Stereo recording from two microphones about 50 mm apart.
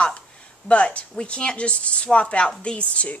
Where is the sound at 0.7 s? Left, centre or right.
Left.